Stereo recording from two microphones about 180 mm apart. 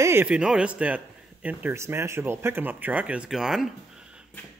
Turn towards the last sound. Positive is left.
turn(degrees=0)  # may be behind; listen again after turning